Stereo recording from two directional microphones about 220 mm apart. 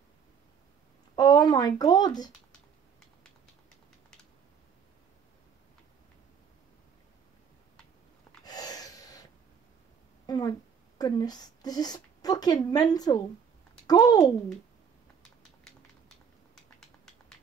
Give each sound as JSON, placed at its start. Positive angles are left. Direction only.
{"t": 1.1, "sound": "speech", "side_deg": 15}
{"t": 8.5, "sound": "gasp", "side_deg": 15}
{"t": 10.2, "sound": "a sound", "side_deg": 20}
{"t": 11.0, "sound": "a woman's voice", "side_deg": 15}